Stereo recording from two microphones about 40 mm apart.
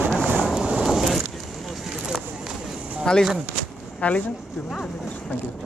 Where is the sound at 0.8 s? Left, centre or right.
Centre.